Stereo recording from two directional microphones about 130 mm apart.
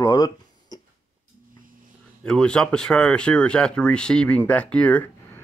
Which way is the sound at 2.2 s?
5° left (ahead or behind).